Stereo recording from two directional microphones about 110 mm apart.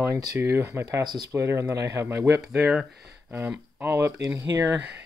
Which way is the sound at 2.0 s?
20° right (ahead or behind).